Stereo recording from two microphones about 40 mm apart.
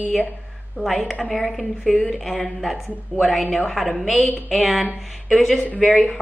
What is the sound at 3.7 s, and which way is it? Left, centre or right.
A woman's voice, centre.